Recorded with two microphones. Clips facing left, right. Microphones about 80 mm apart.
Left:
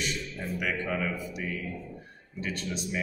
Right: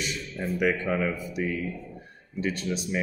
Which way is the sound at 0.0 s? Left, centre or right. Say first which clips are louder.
Right 2 dB; centre.